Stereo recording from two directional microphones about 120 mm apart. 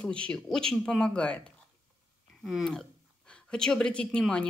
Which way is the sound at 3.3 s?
5° left (ahead or behind).